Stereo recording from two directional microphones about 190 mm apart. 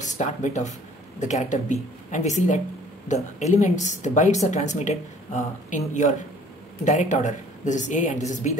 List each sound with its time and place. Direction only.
0.0 s speech: 40° left (ahead or behind)